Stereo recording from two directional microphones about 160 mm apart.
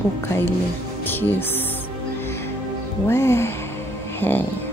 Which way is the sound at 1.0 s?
10° left (ahead or behind).